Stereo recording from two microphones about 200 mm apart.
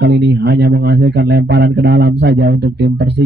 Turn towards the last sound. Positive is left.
turn(degrees=-55)  # may be behind; listen again after turning